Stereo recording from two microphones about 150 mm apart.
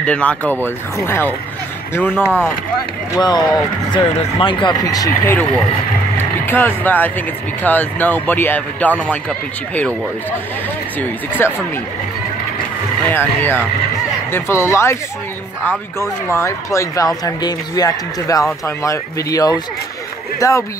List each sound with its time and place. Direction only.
0.0 s speech: 10° left (ahead or behind)
3.2 s speech: 30° left (ahead or behind)
6.1 s vehicle: 15° left (ahead or behind)
7.6 s speech: 10° left (ahead or behind)
11.0 s speech: 15° left (ahead or behind)
13.1 s speech: 15° left (ahead or behind)
16.3 s speech: 20° left (ahead or behind)